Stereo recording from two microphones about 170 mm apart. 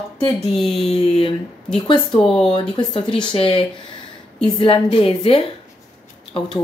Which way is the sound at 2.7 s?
35° left (ahead or behind).